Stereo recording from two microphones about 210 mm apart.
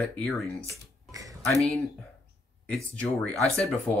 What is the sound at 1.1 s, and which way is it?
Music, 15° right (ahead or behind).